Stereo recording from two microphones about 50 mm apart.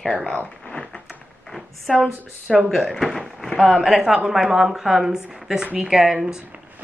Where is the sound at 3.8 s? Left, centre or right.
Centre.